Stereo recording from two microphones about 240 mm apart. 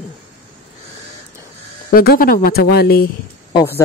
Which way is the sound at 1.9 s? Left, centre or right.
Left.